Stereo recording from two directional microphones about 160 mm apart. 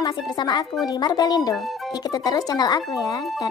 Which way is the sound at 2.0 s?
25° left (ahead or behind).